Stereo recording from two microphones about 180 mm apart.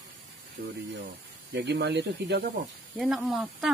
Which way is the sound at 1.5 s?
70° right (ahead or behind).